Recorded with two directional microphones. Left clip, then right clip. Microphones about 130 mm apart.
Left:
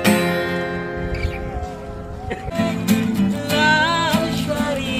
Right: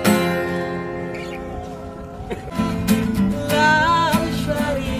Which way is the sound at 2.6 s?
Centre (ahead or behind).